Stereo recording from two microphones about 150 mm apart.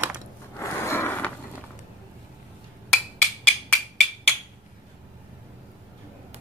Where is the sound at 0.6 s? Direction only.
15° left (ahead or behind).